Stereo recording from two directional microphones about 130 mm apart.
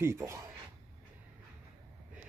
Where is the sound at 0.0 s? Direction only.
20° right (ahead or behind).